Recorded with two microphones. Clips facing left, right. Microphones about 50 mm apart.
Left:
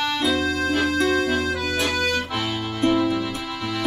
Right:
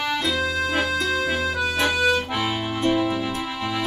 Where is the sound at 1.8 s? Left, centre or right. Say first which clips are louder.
Right 5 dB; right.